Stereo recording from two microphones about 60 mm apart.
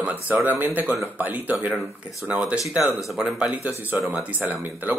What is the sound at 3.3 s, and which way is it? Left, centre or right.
Speech, right.